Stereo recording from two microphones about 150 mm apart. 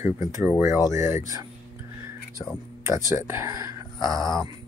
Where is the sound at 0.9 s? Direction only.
55° left (ahead or behind).